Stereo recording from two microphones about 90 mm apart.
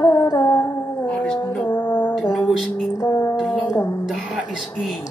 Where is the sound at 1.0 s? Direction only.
10° left (ahead or behind).